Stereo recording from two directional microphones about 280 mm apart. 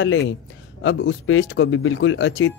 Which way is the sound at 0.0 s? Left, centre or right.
Left.